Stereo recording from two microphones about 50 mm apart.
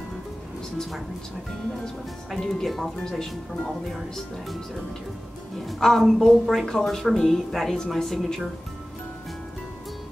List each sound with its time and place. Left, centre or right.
2.3 s a woman's voice: centre
5.8 s a woman's voice: centre